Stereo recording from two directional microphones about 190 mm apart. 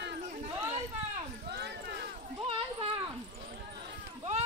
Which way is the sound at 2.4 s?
30° right (ahead or behind).